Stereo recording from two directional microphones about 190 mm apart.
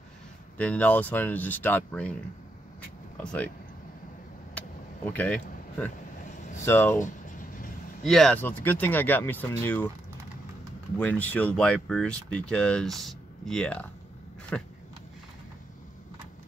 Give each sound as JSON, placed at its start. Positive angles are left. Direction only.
{"t": 0.6, "sound": "speech", "side_deg": 10}
{"t": 4.6, "sound": "vehicle", "side_deg": 10}
{"t": 6.3, "sound": "air conditioning", "side_deg": 40}
{"t": 6.6, "sound": "speech", "side_deg": 10}
{"t": 7.0, "sound": "a sound", "side_deg": 45}
{"t": 8.0, "sound": "speech", "side_deg": 0}
{"t": 11.0, "sound": "speech", "side_deg": 10}